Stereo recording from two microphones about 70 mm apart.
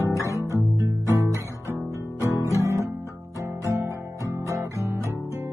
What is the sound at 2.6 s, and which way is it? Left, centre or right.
Guitar, right.